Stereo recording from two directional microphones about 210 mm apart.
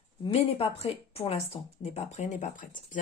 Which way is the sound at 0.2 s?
25° left (ahead or behind).